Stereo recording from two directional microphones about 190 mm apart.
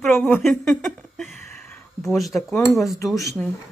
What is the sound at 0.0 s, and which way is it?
Speech, centre (ahead or behind).